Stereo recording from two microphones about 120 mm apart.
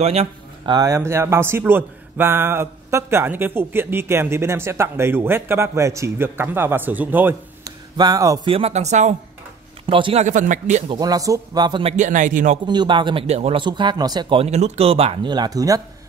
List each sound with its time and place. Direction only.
0.0 s speech: 60° right (ahead or behind)
0.7 s speech: 30° right (ahead or behind)
7.6 s a sound: 30° right (ahead or behind)
8.5 s speech: 55° right (ahead or behind)
9.8 s speech: 45° right (ahead or behind)
10.2 s a man's voice: 90° right
10.9 s speech: 30° right (ahead or behind)
12.0 s a man's voice: 90° right
12.6 s speech: 40° right (ahead or behind)
13.3 s speech: 55° right (ahead or behind)
13.7 s speech: 40° right (ahead or behind)
14.3 s speech: 60° right (ahead or behind)
15.2 s speech: 35° right (ahead or behind)